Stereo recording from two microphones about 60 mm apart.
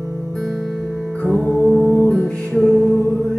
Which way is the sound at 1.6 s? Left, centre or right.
Centre.